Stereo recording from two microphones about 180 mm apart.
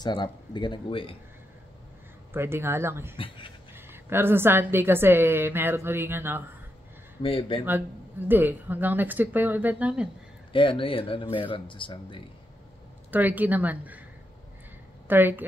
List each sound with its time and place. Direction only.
0.0 s speech: 25° left (ahead or behind)
2.3 s a woman's voice: 15° right (ahead or behind)
3.2 s speech: 30° left (ahead or behind)
3.7 s a woman's voice: 10° right (ahead or behind)
7.2 s speech: 30° left (ahead or behind)
8.3 s a woman's voice: 10° right (ahead or behind)
10.5 s speech: 30° left (ahead or behind)
13.1 s a woman's voice: 10° right (ahead or behind)
15.0 s a woman's voice: 10° right (ahead or behind)